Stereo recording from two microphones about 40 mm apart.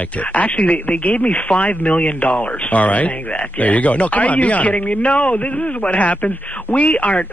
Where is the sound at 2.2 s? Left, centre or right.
Left.